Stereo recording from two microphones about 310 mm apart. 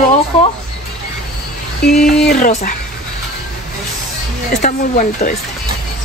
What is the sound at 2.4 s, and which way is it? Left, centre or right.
Speech, left.